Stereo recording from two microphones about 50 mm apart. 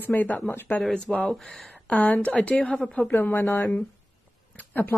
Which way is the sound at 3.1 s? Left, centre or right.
Left.